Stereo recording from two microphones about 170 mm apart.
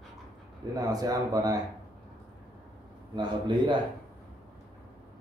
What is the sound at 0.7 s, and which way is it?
Speech, 20° right (ahead or behind).